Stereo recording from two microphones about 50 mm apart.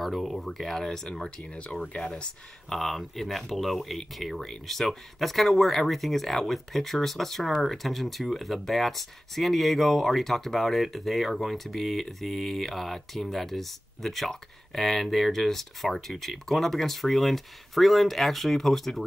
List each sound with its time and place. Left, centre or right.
0.0 s speech: centre
1.4 s speech: centre
2.7 s speech: centre